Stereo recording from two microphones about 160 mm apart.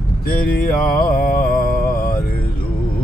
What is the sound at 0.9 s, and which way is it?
Mantra, 60° left (ahead or behind).